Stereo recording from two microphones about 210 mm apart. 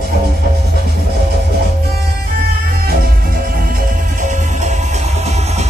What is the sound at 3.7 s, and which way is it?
Music, 40° right (ahead or behind).